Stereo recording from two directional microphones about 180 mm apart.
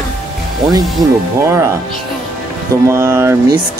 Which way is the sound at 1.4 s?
15° right (ahead or behind).